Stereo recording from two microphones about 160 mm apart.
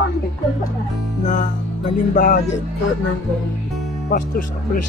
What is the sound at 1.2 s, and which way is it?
Music, 50° left (ahead or behind).